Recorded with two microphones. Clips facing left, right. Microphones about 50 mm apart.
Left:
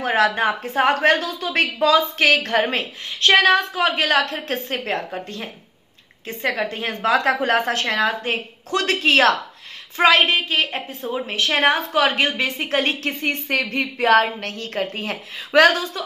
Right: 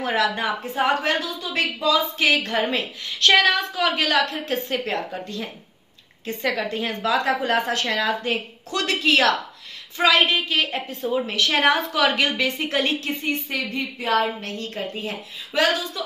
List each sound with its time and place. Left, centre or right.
0.0 s speech: left
2.3 s a woman's voice: left
13.2 s a woman's voice: left